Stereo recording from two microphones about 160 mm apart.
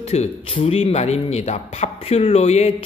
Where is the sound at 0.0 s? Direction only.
40° left (ahead or behind).